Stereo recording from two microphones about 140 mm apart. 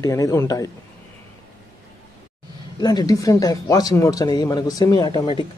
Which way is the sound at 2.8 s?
30° left (ahead or behind).